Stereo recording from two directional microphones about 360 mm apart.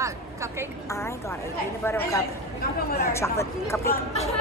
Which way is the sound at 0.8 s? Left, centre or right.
Centre.